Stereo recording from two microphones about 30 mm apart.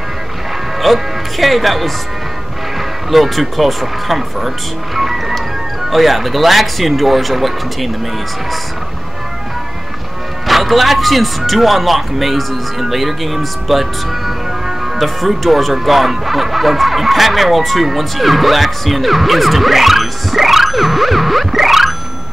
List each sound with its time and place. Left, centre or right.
0.8 s speech: centre
3.1 s speech: centre
4.9 s music: centre
5.9 s speech: centre
10.4 s speech: centre